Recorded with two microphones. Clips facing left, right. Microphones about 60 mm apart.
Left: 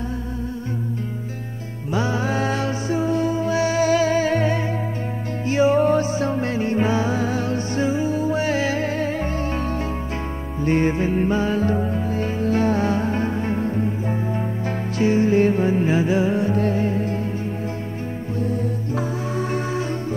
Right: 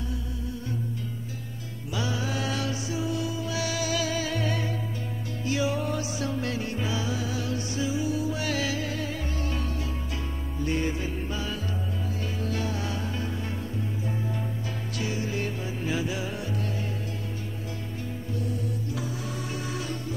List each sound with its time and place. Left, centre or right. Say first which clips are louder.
2.0 s music: left 8 dB; left
10.6 s music: left 9 dB; left
15.0 s music: left 15 dB; left
18.4 s music: left 9 dB; left